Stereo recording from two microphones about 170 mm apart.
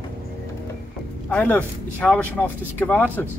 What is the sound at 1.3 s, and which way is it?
Speech, 10° left (ahead or behind).